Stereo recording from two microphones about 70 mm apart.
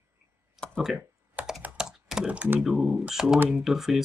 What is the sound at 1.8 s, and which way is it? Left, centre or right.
Computer keyboard, centre.